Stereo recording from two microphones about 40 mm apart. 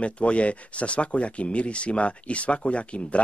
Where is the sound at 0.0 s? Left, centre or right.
Left.